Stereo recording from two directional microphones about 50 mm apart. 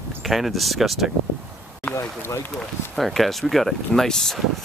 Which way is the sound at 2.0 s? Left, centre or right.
Left.